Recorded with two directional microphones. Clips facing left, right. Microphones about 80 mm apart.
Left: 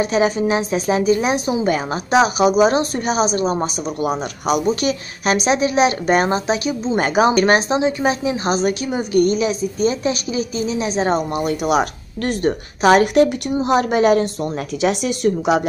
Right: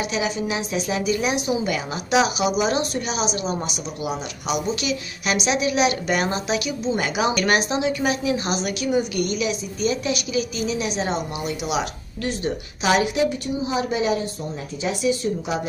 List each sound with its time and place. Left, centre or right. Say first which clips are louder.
0.0 s a woman's voice: left 8 dB; left